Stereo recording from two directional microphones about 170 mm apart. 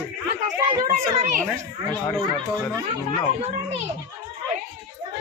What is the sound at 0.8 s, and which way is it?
Speech, 50° right (ahead or behind).